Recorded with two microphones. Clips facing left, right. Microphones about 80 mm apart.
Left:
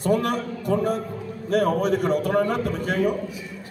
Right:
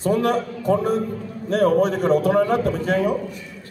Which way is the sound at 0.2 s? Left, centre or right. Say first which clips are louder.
Right 5 dB; right.